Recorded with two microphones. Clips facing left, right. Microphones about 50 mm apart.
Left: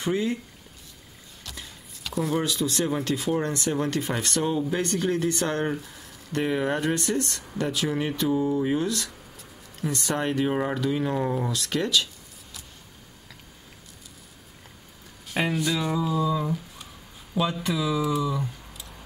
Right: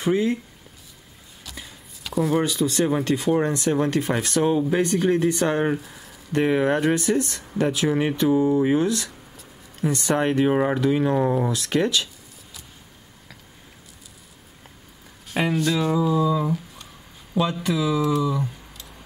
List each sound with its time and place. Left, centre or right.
0.0 s speech: centre
1.4 s a sound: centre
3.3 s speech: centre
6.4 s speech: centre
10.1 s speech: centre
15.4 s speech: centre